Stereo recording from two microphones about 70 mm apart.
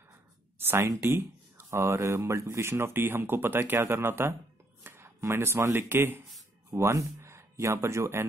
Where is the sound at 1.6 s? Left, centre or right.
Right.